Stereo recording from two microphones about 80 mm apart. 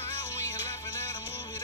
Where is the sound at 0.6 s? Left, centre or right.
Left.